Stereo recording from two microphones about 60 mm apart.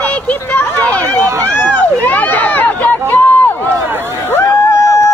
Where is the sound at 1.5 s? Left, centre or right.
Left.